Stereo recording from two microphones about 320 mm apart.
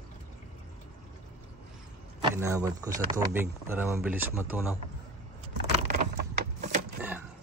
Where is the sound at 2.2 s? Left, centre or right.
Centre.